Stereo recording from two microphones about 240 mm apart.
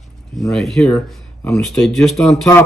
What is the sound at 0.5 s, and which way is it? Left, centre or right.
Speech, centre.